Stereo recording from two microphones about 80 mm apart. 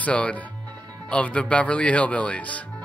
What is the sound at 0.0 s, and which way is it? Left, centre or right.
Speech, centre.